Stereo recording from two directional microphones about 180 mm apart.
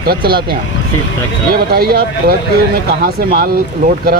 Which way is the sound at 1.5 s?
60° right (ahead or behind).